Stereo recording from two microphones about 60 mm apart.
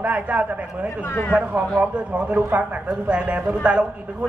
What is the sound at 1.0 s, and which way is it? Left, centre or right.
Speech, left.